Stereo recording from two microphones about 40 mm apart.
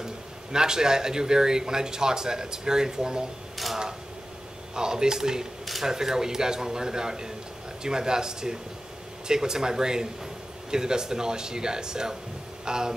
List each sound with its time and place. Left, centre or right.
0.0 s speech: centre
3.5 s mechanisms: centre
4.7 s speech: centre
12.6 s a sound: centre